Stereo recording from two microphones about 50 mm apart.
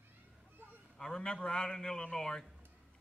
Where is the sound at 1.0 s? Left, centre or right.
Centre.